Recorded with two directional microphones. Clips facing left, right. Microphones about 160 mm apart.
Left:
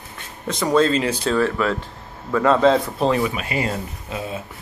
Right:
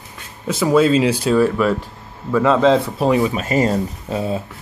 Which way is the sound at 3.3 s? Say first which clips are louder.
Right 7 dB; 40° right (ahead or behind).